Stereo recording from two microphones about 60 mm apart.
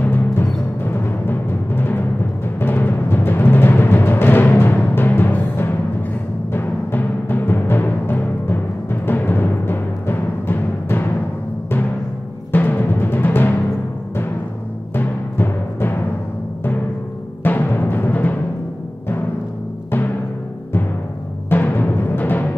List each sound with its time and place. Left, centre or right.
0.0 s timpani: left
9.0 s music: left
12.5 s timpani: left
15.0 s timpani: left
17.4 s music: left
21.5 s music: left